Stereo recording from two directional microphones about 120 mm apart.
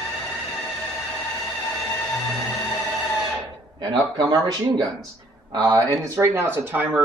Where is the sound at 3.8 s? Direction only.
35° right (ahead or behind).